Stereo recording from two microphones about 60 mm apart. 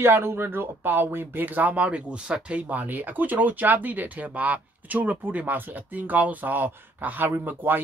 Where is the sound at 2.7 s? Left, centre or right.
Right.